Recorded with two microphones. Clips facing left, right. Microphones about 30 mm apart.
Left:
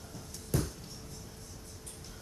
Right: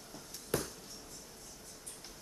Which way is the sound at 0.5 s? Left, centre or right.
Right.